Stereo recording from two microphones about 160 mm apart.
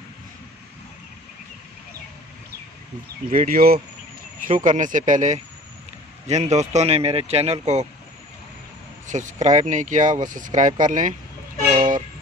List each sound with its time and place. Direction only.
3.3 s speech: 60° right (ahead or behind); by 7.8 s 40° right (ahead or behind)
9.0 s speech: 50° right (ahead or behind)